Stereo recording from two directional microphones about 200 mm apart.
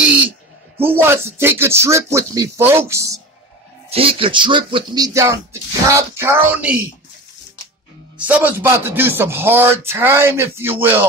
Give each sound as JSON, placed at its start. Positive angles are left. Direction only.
{"t": 0.8, "sound": "speech", "side_deg": -10}
{"t": 3.9, "sound": "speech", "side_deg": -25}
{"t": 8.2, "sound": "speech", "side_deg": -10}